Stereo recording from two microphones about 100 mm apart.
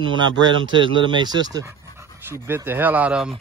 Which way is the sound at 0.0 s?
50° right (ahead or behind).